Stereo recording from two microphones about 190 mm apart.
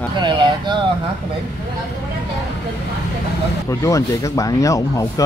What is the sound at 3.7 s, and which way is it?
Speech, 15° left (ahead or behind).